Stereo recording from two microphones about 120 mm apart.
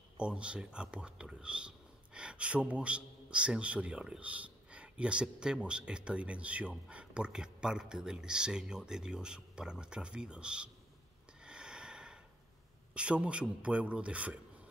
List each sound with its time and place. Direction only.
0.2 s a man's voice: 10° right (ahead or behind)
11.4 s snort: 5° right (ahead or behind)
12.9 s a man's voice: 10° right (ahead or behind)